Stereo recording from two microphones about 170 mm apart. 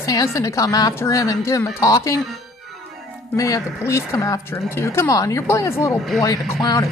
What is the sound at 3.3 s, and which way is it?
A woman's voice, 20° left (ahead or behind).